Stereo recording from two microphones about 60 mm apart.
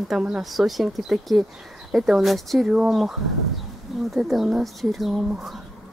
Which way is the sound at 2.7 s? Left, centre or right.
Centre.